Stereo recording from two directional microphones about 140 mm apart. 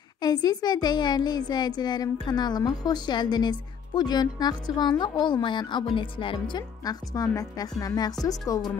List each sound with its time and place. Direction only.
0.2 s speech: 30° left (ahead or behind)